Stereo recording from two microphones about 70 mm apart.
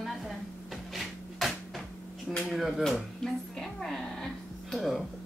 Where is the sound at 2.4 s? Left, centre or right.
Centre.